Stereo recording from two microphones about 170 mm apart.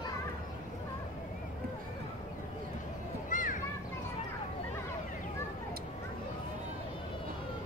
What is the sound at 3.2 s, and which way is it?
Children playing, 50° left (ahead or behind).